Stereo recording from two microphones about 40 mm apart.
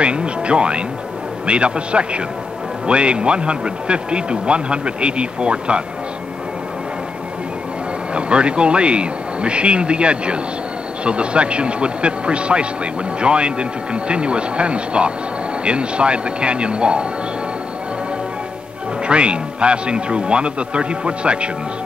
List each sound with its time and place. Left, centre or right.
0.0 s speech: right
8.1 s speech: right
19.0 s speech: right